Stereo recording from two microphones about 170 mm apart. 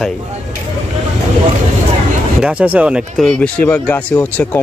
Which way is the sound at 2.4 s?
10° right (ahead or behind).